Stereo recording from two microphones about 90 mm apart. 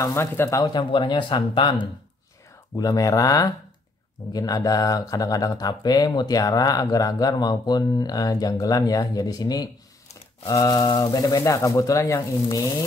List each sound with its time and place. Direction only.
0.0 s speech: 30° left (ahead or behind)
0.7 s speech: 60° left (ahead or behind)
2.7 s speech: 45° left (ahead or behind)